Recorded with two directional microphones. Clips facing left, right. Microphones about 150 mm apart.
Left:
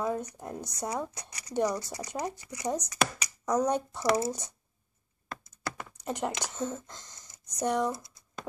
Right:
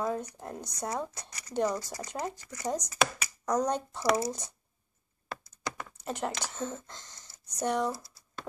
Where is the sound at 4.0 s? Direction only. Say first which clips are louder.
Right 1 dB; 25° left (ahead or behind).